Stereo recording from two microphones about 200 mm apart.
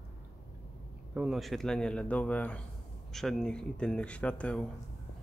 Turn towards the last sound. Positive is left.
turn(degrees=5)  # may be behind; listen again after turning